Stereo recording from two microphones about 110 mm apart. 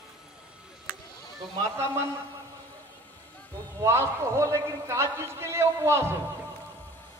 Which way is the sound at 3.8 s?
25° right (ahead or behind).